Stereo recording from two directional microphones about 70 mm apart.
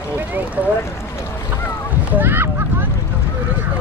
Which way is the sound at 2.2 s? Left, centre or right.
Right.